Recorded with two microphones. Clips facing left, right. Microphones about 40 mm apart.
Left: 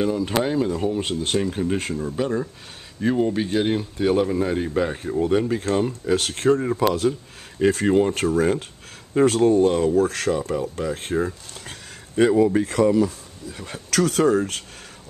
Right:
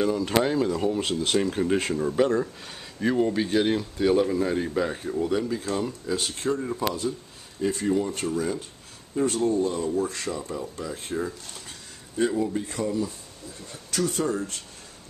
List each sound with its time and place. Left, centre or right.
0.0 s speech: centre
1.4 s speech: centre
3.7 s speech: left
5.2 s speech: left
6.1 s speech: left
7.1 s speech: left
7.7 s speech: left
9.1 s speech: left
9.6 s speech: left
10.5 s speech: left
12.2 s speech: left
12.5 s speech: left